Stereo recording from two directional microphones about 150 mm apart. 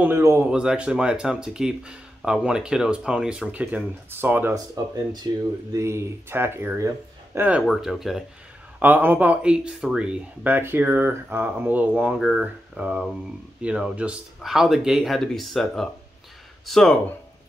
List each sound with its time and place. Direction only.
0.0 s speech: 15° right (ahead or behind)
0.5 s speech: 5° right (ahead or behind)
4.8 s speech: 25° right (ahead or behind)
7.6 s speech: centre (ahead or behind)
8.7 s speech: 10° right (ahead or behind)